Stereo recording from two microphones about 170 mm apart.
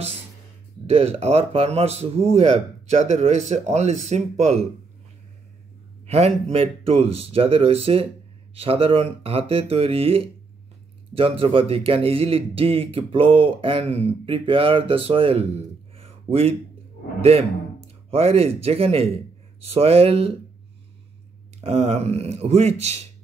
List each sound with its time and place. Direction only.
0.8 s speech: 35° right (ahead or behind)
6.0 s speech: 35° right (ahead or behind)
21.5 s speech: 40° right (ahead or behind)